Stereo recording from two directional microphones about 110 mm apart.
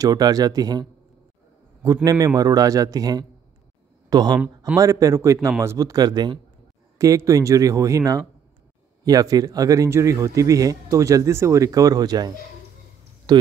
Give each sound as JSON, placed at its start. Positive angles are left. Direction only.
{"t": 0.0, "sound": "speech", "side_deg": -35}
{"t": 2.0, "sound": "a man's voice", "side_deg": -30}
{"t": 7.0, "sound": "speech", "side_deg": -30}
{"t": 13.3, "sound": "speech", "side_deg": -40}